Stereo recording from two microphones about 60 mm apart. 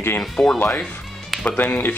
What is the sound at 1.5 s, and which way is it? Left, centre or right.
Speech, left.